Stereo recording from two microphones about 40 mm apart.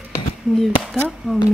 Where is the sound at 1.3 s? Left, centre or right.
Centre.